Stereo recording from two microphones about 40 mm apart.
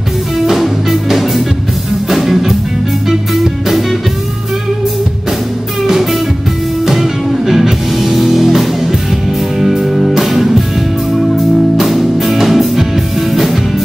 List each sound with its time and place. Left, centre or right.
0.5 s music: centre
6.9 s music: centre